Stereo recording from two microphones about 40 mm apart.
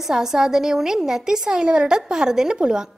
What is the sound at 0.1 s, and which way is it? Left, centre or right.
A woman's voice, centre.